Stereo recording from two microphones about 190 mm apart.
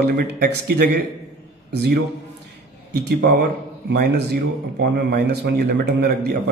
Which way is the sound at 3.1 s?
60° right (ahead or behind).